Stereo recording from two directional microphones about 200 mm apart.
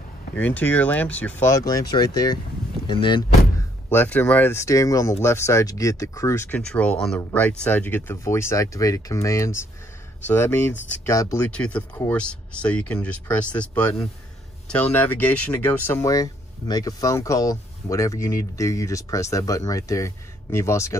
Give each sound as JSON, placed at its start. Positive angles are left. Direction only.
{"t": 0.4, "sound": "speech", "side_deg": 10}
{"t": 3.9, "sound": "speech", "side_deg": 10}